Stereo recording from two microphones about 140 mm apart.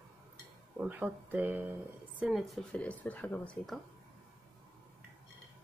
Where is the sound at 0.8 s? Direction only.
15° right (ahead or behind).